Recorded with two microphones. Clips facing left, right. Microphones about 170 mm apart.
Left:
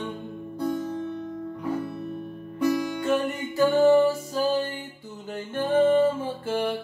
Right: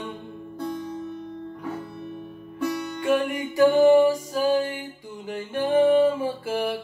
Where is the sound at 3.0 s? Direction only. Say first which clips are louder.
Right 6 dB; 10° right (ahead or behind).